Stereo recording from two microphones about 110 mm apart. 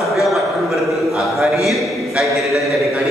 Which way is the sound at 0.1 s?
Centre (ahead or behind).